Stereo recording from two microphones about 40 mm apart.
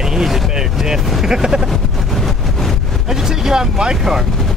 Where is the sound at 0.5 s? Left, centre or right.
Centre.